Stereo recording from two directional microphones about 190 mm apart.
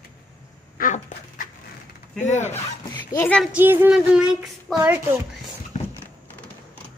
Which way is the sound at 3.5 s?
10° right (ahead or behind).